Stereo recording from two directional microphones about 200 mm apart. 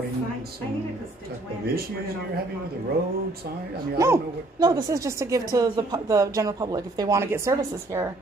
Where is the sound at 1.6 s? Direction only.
50° right (ahead or behind).